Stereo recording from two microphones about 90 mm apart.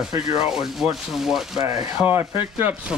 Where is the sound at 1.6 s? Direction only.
40° right (ahead or behind).